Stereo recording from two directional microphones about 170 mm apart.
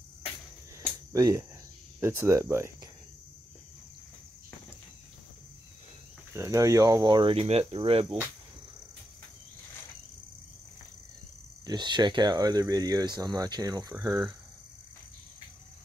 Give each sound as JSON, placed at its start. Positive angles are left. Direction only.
{"t": 1.1, "sound": "speech", "side_deg": -20}
{"t": 6.3, "sound": "speech", "side_deg": -15}
{"t": 11.6, "sound": "speech", "side_deg": -25}